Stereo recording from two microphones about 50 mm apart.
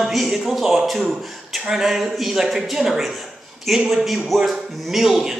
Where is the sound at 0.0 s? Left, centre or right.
Centre.